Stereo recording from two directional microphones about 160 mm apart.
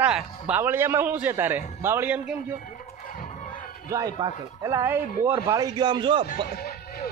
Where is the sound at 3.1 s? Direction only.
55° left (ahead or behind).